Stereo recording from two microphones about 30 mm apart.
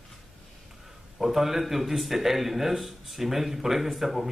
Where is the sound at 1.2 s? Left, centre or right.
Centre.